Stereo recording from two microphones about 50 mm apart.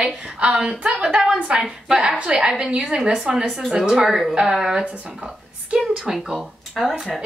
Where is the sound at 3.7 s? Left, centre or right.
Centre.